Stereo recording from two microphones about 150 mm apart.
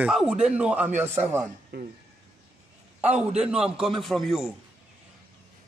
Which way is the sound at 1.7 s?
90° right.